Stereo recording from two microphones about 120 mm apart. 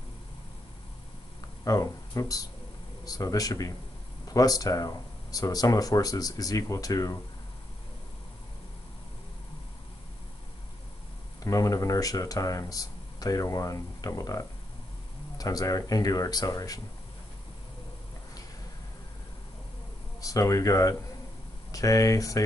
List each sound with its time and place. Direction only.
1.6 s speech: 30° left (ahead or behind)
11.4 s speech: 30° left (ahead or behind)
20.2 s speech: 30° left (ahead or behind)